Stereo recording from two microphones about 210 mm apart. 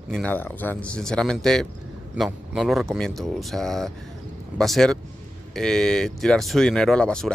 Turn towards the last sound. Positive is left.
turn(degrees=5)  # may be behind; listen again after turning